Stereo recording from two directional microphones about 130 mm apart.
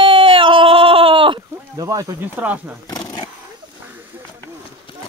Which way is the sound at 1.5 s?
25° right (ahead or behind).